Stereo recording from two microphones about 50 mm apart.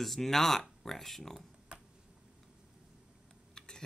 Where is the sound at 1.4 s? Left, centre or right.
Centre.